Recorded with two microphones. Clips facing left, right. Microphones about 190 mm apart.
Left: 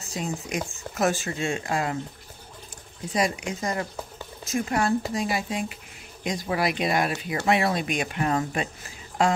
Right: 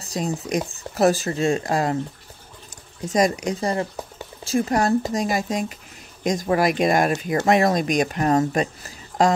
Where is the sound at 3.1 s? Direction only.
40° right (ahead or behind).